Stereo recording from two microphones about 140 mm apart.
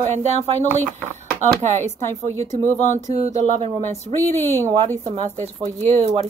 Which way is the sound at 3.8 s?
15° left (ahead or behind).